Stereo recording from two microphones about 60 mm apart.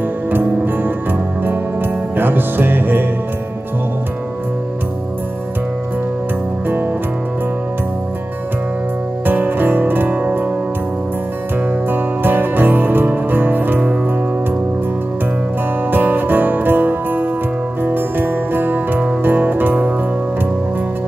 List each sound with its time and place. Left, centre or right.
0.3 s music: right
9.2 s music: right
11.9 s music: right
15.9 s music: right